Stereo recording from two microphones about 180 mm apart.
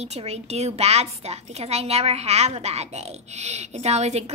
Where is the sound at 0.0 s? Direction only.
35° right (ahead or behind).